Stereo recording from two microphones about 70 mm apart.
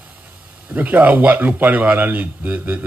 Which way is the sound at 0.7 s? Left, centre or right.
Right.